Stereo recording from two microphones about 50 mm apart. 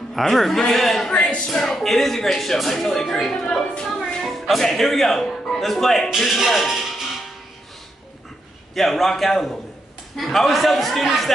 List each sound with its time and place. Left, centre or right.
0.1 s speech: centre
1.1 s speech: left
1.5 s speech: centre
8.7 s speech: centre